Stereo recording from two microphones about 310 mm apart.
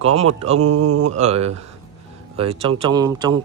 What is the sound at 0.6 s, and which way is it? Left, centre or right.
Mantra, right.